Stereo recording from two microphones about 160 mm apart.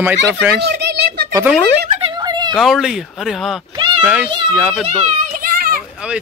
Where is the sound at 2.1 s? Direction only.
25° right (ahead or behind).